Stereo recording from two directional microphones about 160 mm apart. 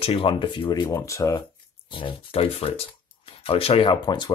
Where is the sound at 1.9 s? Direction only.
35° left (ahead or behind).